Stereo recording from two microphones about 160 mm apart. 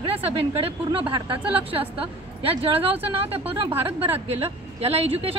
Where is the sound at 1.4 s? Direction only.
35° right (ahead or behind).